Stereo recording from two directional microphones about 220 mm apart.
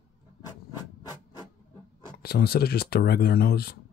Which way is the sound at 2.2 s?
45° left (ahead or behind).